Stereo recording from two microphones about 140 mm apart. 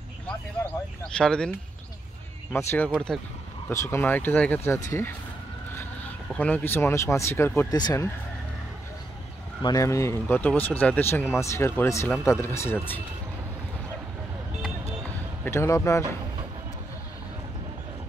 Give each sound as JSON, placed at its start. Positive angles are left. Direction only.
{"t": 1.0, "sound": "speech", "side_deg": 5}
{"t": 2.5, "sound": "speech", "side_deg": 15}
{"t": 2.9, "sound": "speech", "side_deg": 5}
{"t": 3.6, "sound": "speech", "side_deg": 20}
{"t": 5.8, "sound": "speech", "side_deg": 10}
{"t": 9.6, "sound": "speech", "side_deg": 25}
{"t": 15.4, "sound": "speech", "side_deg": 20}